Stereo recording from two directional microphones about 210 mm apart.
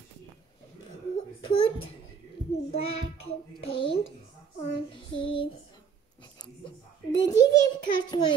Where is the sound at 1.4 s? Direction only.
25° left (ahead or behind).